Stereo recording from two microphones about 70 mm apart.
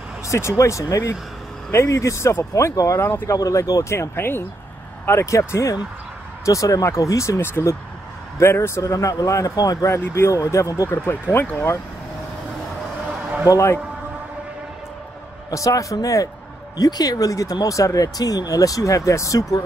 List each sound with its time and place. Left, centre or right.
0.3 s speech: left
3.9 s speech: left
5.0 s speech: left
9.8 s speech: left
13.5 s speech: left
15.5 s speech: left
16.7 s speech: left